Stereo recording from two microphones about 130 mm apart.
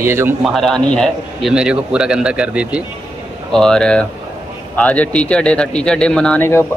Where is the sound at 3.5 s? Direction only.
5° left (ahead or behind).